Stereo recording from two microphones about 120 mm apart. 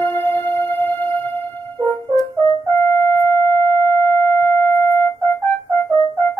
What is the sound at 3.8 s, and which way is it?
Sine wave, 20° left (ahead or behind).